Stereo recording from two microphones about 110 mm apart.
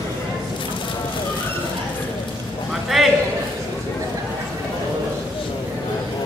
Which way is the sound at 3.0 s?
Centre (ahead or behind).